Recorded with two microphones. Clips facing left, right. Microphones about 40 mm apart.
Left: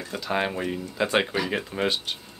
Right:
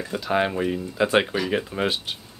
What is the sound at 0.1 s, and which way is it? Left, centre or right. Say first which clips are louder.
Speech: right 3 dB; centre.